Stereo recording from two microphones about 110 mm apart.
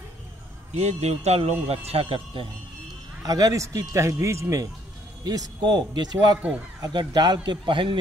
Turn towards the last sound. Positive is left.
turn(degrees=-50)  # may be behind; listen again after turning